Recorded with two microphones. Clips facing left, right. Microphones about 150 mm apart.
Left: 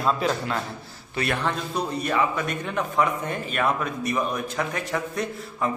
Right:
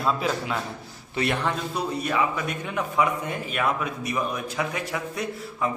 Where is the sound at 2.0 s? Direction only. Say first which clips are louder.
Left 2 dB; 10° right (ahead or behind).